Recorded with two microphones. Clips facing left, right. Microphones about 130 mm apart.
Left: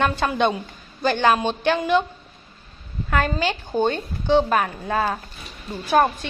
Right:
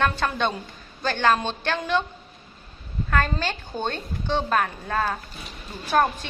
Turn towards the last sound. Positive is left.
turn(degrees=15)  # may be behind; listen again after turning